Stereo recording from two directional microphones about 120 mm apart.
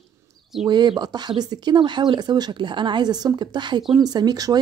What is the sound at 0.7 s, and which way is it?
Speech, 35° right (ahead or behind).